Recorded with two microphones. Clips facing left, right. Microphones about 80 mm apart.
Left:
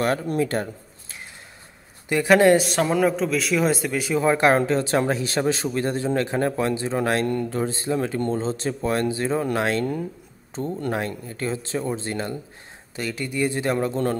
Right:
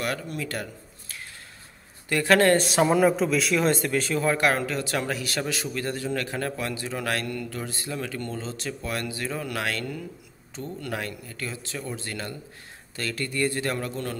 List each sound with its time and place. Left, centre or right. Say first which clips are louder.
0.0 s speech: left 8 dB; left
2.0 s speech: left 4 dB; centre
2.6 s a man's voice: even; centre; by 14.1 s left